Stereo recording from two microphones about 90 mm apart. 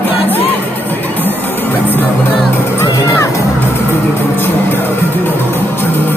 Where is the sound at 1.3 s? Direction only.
20° left (ahead or behind).